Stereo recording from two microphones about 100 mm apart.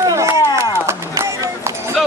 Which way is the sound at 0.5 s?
30° right (ahead or behind).